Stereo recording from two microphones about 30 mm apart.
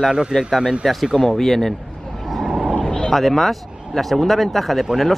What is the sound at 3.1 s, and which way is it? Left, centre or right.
Speech, centre.